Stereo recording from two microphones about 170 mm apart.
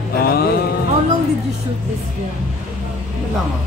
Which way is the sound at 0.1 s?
65° left (ahead or behind).